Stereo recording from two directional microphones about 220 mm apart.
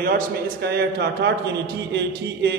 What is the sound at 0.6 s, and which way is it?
Mantra, 50° right (ahead or behind).